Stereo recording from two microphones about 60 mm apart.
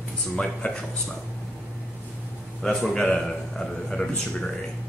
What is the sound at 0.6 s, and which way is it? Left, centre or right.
Speech, left.